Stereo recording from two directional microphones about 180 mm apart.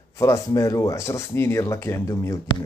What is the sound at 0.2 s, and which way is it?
Speech, 15° left (ahead or behind).